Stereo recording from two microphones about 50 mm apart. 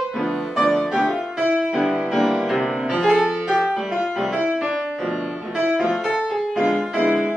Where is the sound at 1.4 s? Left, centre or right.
Right.